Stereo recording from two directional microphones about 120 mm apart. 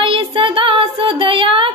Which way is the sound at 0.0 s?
50° right (ahead or behind).